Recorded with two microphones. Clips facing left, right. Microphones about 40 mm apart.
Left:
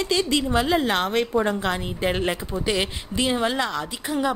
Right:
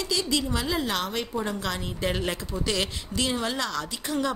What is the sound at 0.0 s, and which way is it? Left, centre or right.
A woman's voice, left.